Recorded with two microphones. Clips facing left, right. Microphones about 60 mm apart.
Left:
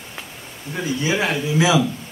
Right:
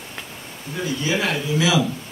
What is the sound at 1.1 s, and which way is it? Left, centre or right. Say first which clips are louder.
Speech: left 1 dB; left.